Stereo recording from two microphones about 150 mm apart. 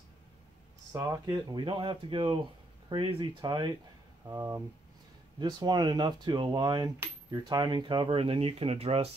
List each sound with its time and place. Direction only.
0.9 s speech: 20° right (ahead or behind)
4.3 s speech: 20° right (ahead or behind); by 9.1 s 40° right (ahead or behind)